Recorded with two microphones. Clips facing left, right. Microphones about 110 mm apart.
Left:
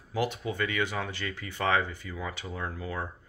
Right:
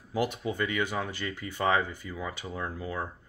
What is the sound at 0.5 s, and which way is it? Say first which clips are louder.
Speech: right 1 dB; 15° right (ahead or behind).